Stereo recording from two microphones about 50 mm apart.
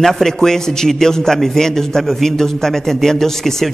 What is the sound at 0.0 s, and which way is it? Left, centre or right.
A man's voice, centre.